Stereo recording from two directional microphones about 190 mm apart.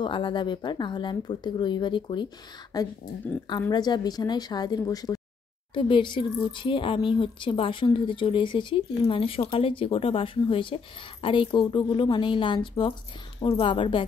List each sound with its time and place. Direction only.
0.0 s speech: 25° left (ahead or behind)